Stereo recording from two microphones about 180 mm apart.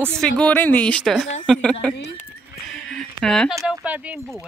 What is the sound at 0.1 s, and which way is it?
A woman's voice, 5° left (ahead or behind).